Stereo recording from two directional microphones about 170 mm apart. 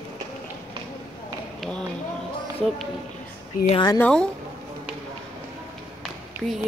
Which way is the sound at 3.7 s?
25° left (ahead or behind).